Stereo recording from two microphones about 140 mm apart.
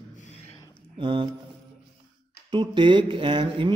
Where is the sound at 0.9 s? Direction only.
35° right (ahead or behind).